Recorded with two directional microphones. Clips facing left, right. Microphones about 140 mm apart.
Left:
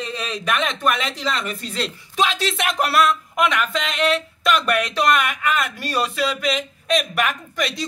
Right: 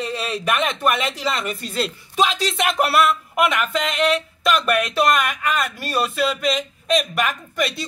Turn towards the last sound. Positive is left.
turn(degrees=0)  # may be behind; listen again after turning